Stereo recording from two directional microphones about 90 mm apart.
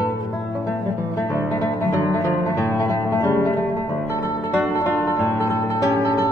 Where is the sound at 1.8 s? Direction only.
35° left (ahead or behind).